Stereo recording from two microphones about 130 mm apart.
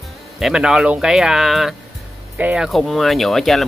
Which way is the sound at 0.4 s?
5° right (ahead or behind).